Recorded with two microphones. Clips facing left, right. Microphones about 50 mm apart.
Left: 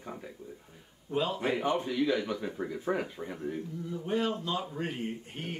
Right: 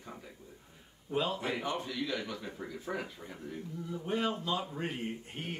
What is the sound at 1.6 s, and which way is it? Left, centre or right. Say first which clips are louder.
Speech: left 7 dB; left.